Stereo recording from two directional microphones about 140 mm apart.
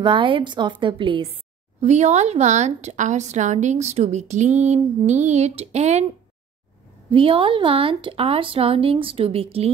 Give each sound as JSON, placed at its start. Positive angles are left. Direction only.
{"t": 0.0, "sound": "a woman's voice", "side_deg": -35}
{"t": 7.1, "sound": "a woman's voice", "side_deg": -40}